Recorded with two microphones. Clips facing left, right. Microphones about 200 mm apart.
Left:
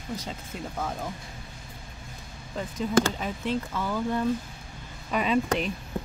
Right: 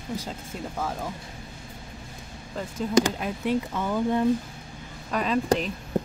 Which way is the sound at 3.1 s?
5° right (ahead or behind).